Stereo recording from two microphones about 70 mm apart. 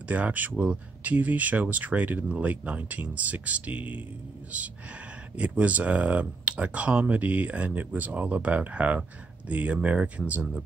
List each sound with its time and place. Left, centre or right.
0.1 s speech: right